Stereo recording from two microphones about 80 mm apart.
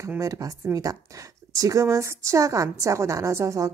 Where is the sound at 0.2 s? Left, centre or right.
Right.